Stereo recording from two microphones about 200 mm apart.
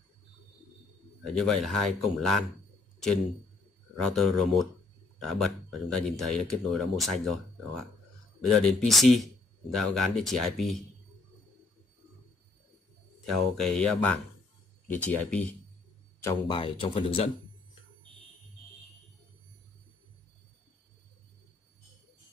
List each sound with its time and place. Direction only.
1.4 s speech: centre (ahead or behind)
4.0 s speech: centre (ahead or behind)
13.6 s speech: 5° left (ahead or behind)
16.3 s speech: 25° left (ahead or behind)